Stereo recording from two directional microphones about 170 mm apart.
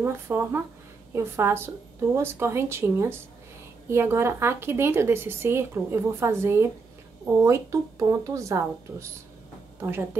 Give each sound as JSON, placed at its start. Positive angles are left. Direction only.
{"t": 0.0, "sound": "speech", "side_deg": -15}
{"t": 9.8, "sound": "speech", "side_deg": -15}